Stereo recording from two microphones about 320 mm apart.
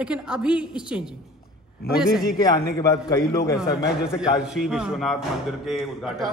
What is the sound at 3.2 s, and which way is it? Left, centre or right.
A woman's voice, centre.